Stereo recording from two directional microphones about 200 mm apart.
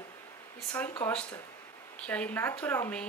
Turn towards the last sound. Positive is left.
turn(degrees=10)  # may be behind; listen again after turning